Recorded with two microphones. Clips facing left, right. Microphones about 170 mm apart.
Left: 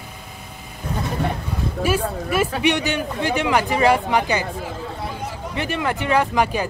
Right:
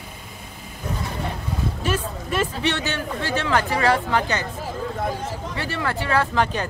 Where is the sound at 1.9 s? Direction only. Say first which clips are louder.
Left 5 dB; 10° left (ahead or behind).